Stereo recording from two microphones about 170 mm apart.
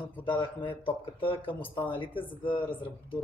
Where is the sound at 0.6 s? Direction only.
30° left (ahead or behind).